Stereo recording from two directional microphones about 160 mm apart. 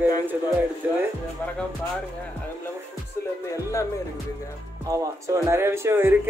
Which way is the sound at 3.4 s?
20° left (ahead or behind).